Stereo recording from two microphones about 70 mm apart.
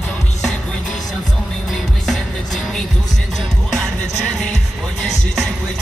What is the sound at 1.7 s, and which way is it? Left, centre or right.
Music, centre.